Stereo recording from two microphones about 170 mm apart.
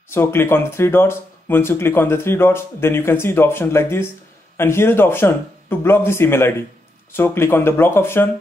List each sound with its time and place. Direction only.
0.1 s speech: 15° left (ahead or behind)